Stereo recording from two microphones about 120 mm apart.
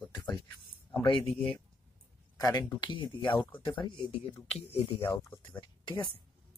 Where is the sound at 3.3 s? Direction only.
20° left (ahead or behind).